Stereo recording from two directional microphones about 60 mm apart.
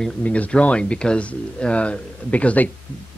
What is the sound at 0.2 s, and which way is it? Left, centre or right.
Speech, left.